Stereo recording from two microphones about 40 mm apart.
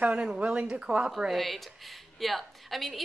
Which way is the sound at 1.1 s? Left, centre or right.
Centre.